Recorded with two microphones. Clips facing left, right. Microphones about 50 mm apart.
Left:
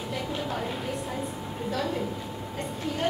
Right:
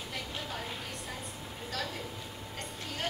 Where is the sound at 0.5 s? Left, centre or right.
Centre.